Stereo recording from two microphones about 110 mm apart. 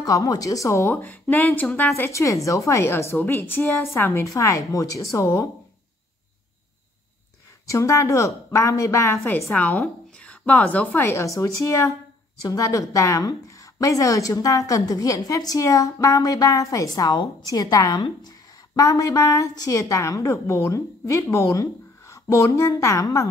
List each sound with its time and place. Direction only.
0.0 s a woman's voice: 30° left (ahead or behind); by 1.7 s 15° left (ahead or behind)
2.0 s a woman's voice: 25° left (ahead or behind)
7.6 s a woman's voice: 30° left (ahead or behind)
9.5 s a woman's voice: 10° left (ahead or behind)
11.1 s a woman's voice: 25° left (ahead or behind)